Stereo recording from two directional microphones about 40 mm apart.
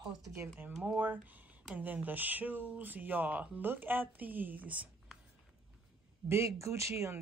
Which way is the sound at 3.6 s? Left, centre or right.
Right.